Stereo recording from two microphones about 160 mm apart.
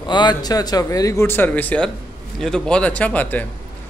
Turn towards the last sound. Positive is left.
turn(degrees=10)  # may be behind; listen again after turning